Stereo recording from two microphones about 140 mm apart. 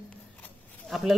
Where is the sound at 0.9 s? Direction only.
Centre (ahead or behind).